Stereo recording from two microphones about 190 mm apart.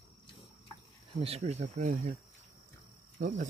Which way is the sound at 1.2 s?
35° right (ahead or behind).